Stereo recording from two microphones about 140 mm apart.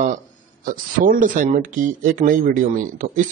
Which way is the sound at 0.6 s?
85° right.